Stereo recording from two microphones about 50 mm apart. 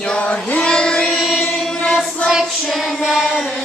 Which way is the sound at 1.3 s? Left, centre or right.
Centre.